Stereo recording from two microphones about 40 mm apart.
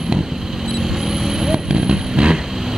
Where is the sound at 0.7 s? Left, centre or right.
Centre.